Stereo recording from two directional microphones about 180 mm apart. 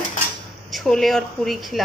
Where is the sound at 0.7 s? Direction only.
Centre (ahead or behind).